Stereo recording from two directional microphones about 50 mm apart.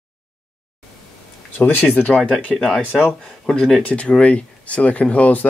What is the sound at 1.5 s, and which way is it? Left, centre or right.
Speech, left.